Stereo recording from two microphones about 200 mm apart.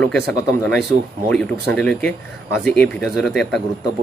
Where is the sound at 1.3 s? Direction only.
5° left (ahead or behind).